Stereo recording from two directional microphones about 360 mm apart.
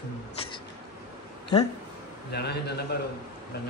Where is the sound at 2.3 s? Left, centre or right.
Left.